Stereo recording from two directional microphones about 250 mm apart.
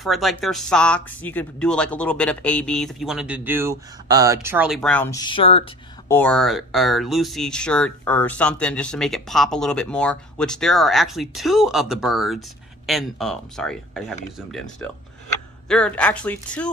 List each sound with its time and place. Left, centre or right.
0.0 s speech: centre; by 5.6 s left
6.0 s speech: centre